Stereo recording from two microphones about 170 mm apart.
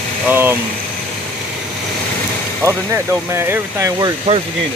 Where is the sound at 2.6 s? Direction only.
15° right (ahead or behind).